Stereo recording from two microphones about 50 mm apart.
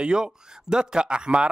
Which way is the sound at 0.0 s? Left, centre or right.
Centre.